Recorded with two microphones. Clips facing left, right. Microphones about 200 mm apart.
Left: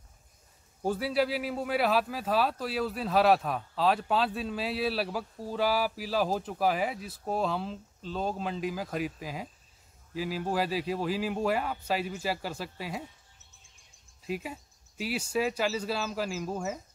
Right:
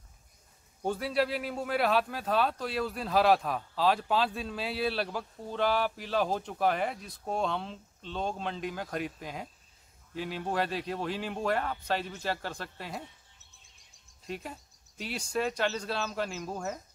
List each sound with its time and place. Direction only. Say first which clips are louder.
0.8 s speech: left 1 dB; centre (ahead or behind)
14.2 s speech: left 4 dB; 5° left (ahead or behind)